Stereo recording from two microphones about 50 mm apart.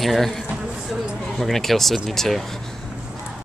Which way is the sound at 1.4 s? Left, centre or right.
Centre.